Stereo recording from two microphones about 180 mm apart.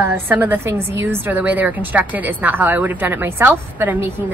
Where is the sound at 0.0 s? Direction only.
10° right (ahead or behind).